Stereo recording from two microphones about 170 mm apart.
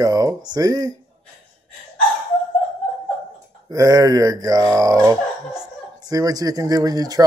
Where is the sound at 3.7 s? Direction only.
20° right (ahead or behind).